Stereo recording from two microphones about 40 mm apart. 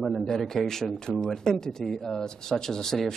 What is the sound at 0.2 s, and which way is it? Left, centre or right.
Speech, centre.